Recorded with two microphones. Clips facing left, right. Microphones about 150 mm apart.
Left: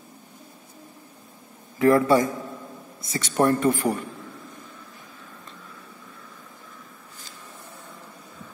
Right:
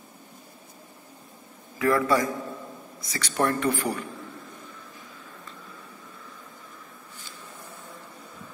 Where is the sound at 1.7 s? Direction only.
25° left (ahead or behind).